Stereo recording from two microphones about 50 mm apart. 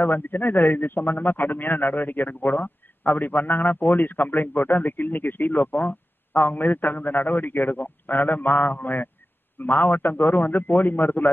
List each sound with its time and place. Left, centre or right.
0.0 s a man's voice: left